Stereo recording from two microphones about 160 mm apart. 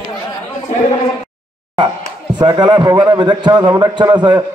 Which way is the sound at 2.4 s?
25° right (ahead or behind).